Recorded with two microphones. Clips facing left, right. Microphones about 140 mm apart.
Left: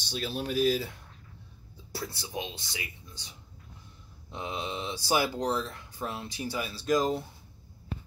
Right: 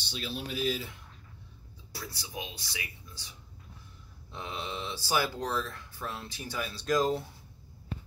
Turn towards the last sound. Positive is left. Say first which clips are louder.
# left 1 dB
turn(degrees=0)  # may be behind; listen again after turning